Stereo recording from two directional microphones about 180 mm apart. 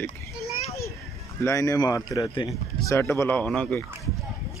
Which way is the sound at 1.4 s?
15° left (ahead or behind).